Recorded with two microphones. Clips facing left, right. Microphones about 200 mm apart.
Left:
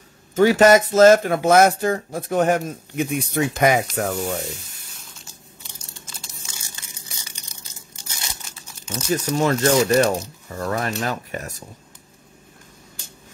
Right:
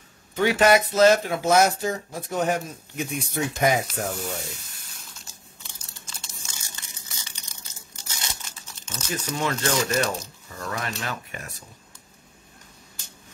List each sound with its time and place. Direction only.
0.3 s speech: 40° left (ahead or behind); by 4.0 s 70° left (ahead or behind)
4.1 s speech: 50° left (ahead or behind)
7.1 s a sound: 10° left (ahead or behind)
8.7 s crumpling: 10° left (ahead or behind)
9.1 s speech: 40° left (ahead or behind)